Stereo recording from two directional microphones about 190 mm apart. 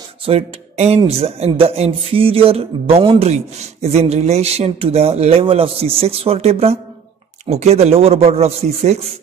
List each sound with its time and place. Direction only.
0.2 s speech: 30° right (ahead or behind)